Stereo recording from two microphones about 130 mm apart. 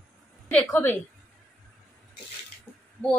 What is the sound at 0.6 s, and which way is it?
Speech, 15° left (ahead or behind).